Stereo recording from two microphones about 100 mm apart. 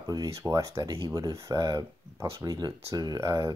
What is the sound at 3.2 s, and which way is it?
Speech, 30° right (ahead or behind).